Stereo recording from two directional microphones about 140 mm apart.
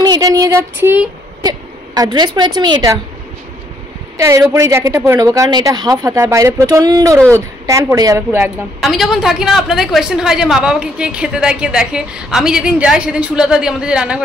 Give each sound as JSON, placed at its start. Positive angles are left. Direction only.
{"t": 0.0, "sound": "a sound", "side_deg": -25}
{"t": 2.0, "sound": "a woman's voice", "side_deg": -30}
{"t": 4.2, "sound": "a woman's voice", "side_deg": -20}
{"t": 8.8, "sound": "a woman's voice", "side_deg": 0}